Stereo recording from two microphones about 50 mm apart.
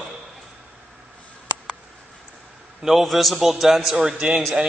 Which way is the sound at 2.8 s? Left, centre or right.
Centre.